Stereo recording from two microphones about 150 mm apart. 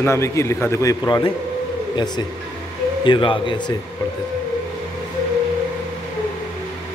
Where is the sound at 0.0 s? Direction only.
20° left (ahead or behind).